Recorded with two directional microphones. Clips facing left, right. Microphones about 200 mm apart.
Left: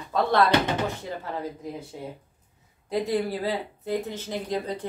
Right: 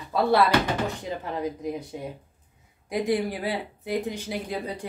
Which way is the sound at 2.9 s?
15° right (ahead or behind).